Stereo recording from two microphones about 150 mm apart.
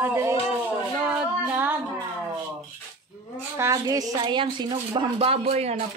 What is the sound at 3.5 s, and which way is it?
A woman's voice, 20° right (ahead or behind).